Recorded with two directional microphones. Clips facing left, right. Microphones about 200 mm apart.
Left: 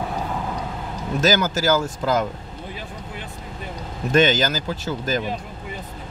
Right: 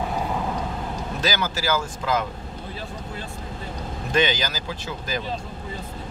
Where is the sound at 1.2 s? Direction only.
45° left (ahead or behind).